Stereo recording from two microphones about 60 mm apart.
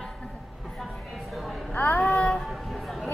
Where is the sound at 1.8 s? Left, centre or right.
Left.